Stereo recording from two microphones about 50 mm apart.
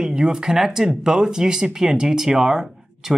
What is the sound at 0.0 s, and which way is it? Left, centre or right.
Speech, centre.